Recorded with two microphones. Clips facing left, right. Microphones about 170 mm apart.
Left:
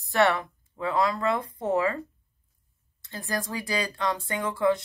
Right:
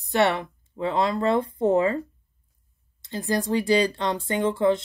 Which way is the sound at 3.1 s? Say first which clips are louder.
Right 8 dB; 20° right (ahead or behind).